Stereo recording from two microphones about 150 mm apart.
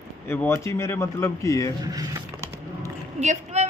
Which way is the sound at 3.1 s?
50° right (ahead or behind).